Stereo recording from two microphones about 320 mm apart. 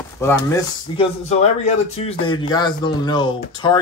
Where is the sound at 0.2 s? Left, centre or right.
Centre.